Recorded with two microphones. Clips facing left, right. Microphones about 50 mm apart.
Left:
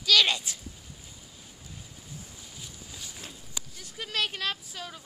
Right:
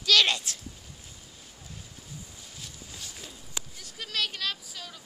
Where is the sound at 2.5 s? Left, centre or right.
Centre.